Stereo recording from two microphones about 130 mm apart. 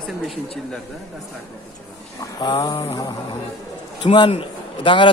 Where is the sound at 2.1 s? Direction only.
30° left (ahead or behind).